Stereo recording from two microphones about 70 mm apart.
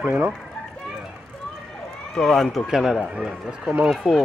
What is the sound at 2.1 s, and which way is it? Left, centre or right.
Speech, centre.